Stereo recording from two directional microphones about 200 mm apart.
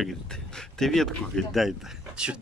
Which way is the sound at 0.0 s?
5° left (ahead or behind).